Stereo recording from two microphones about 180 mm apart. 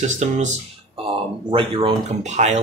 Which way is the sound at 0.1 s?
40° right (ahead or behind).